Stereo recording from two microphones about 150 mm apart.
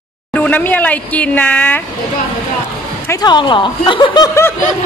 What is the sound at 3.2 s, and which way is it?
Speech, 30° left (ahead or behind).